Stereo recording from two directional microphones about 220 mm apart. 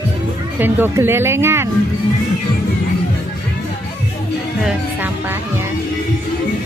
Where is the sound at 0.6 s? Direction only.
10° right (ahead or behind).